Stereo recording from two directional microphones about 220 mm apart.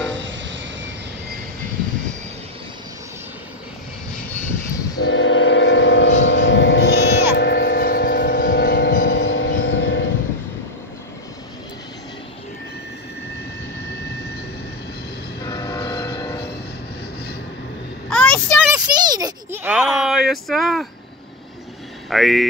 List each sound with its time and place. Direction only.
0.2 s vehicle: 55° right (ahead or behind)
4.9 s train: 60° left (ahead or behind)
15.4 s vehicle: 20° left (ahead or behind)
18.1 s a sound: 5° left (ahead or behind)
18.7 s a sound: 15° right (ahead or behind); by 20.8 s centre (ahead or behind)
22.1 s speech: centre (ahead or behind)